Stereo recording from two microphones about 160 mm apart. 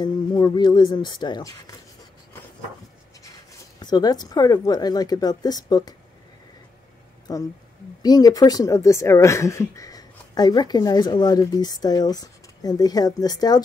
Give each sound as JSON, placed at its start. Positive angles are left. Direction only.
{"t": 0.0, "sound": "speech", "side_deg": 25}
{"t": 3.8, "sound": "speech", "side_deg": 25}
{"t": 7.3, "sound": "speech", "side_deg": 25}